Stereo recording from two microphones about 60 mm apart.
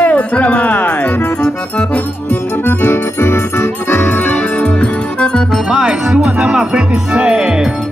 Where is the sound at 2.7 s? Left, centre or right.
Left.